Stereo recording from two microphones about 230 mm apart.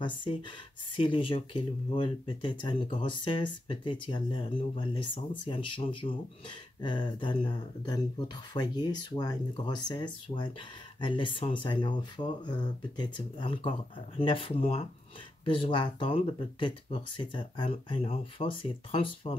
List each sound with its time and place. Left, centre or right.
0.0 s speech: left